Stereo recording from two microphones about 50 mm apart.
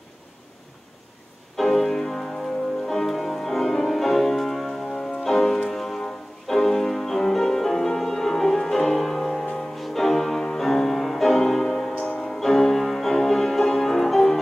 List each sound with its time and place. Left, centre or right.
1.6 s music: centre